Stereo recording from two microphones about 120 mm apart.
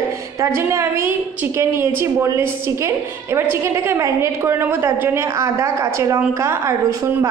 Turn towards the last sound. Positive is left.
turn(degrees=-25)  # may be behind; listen again after turning